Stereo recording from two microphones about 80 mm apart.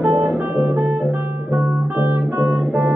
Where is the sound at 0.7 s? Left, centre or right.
Centre.